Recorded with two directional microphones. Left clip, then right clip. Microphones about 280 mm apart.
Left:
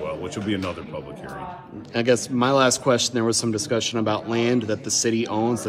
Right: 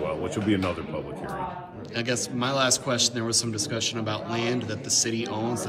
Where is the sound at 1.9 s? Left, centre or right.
Left.